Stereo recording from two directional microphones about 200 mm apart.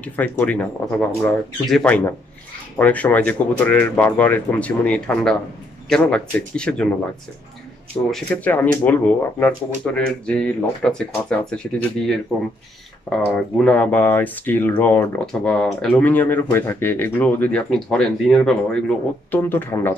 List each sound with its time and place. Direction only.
0.0 s speech: 10° left (ahead or behind)
8.3 s speech: 5° left (ahead or behind)